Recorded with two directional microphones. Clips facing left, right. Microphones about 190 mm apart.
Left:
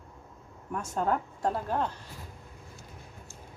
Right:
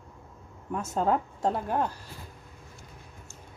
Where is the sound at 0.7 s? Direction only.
25° right (ahead or behind).